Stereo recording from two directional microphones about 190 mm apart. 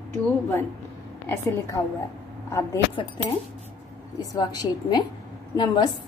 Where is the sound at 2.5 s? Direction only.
15° left (ahead or behind).